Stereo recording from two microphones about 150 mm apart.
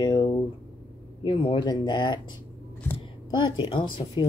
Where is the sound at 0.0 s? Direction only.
30° left (ahead or behind).